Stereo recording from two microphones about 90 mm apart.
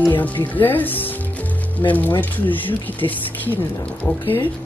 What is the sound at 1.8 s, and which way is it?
Speech, 30° left (ahead or behind).